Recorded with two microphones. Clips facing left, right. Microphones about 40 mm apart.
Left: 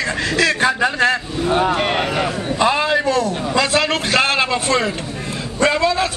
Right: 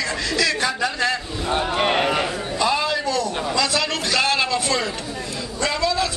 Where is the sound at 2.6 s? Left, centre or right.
Left.